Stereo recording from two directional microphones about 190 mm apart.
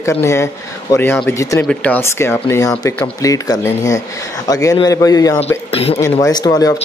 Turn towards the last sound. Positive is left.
turn(degrees=20)  # may be behind; listen again after turning